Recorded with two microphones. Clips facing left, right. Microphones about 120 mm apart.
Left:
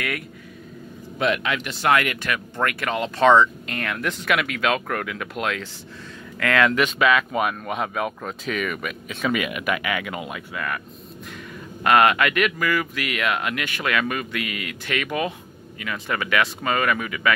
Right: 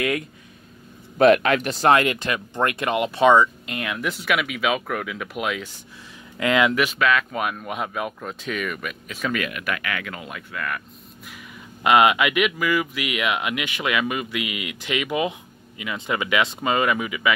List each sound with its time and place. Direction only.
1.1 s speech: 50° right (ahead or behind); by 6.7 s 15° right (ahead or behind)
6.7 s speech: 5° right (ahead or behind)
11.8 s speech: 15° right (ahead or behind)